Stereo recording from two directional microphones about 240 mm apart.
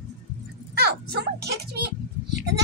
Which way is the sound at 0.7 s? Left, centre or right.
Right.